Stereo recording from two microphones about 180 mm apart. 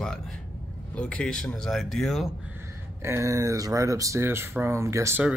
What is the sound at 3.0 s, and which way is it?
Speech, 15° right (ahead or behind).